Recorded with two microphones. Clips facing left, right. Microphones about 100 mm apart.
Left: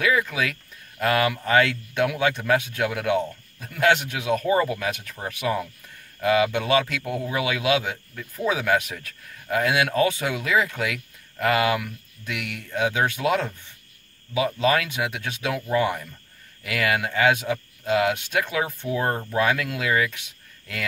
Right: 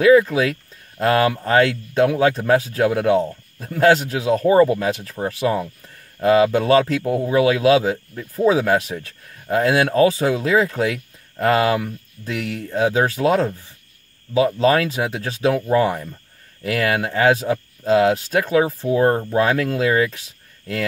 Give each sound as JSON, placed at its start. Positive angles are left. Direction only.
{"t": 0.0, "sound": "speech", "side_deg": -30}